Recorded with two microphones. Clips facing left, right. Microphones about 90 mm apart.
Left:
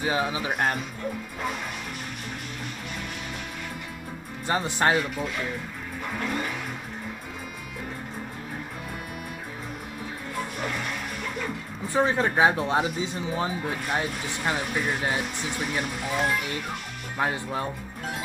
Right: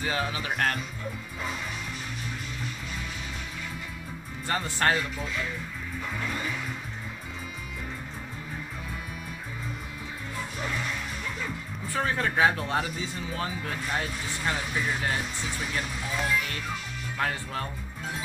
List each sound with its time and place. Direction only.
0.0 s speech: 15° left (ahead or behind)
4.5 s speech: 20° left (ahead or behind)
6.1 s vehicle: 55° left (ahead or behind)
10.6 s vehicle: 55° left (ahead or behind)
11.9 s speech: 20° left (ahead or behind)
15.8 s speech: 55° left (ahead or behind)
17.2 s speech: 15° left (ahead or behind)